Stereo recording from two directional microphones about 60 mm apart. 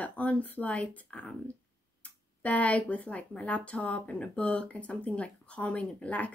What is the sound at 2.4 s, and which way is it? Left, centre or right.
Speech, left.